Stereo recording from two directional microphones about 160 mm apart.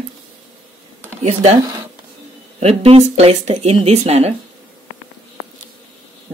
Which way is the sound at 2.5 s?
40° right (ahead or behind).